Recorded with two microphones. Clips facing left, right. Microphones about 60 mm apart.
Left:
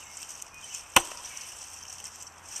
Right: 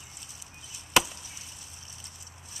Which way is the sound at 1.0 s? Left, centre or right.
Centre.